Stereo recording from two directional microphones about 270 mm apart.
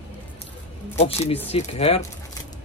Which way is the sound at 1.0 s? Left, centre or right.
Left.